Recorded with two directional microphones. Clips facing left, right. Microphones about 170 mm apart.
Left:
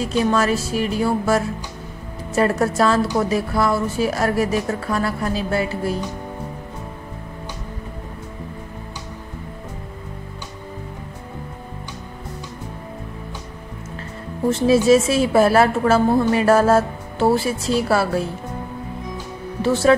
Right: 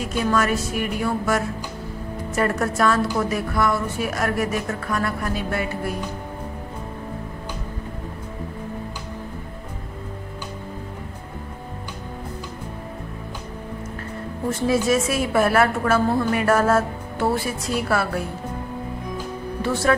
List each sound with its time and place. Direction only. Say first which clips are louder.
0.0 s a woman's voice: left 3 dB; 25° left (ahead or behind)
14.5 s a woman's voice: left 6 dB; 25° left (ahead or behind)
19.6 s a woman's voice: left 5 dB; 25° left (ahead or behind)